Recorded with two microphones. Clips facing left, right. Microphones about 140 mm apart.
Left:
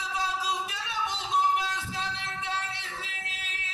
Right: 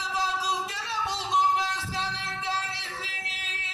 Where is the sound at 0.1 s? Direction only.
35° right (ahead or behind).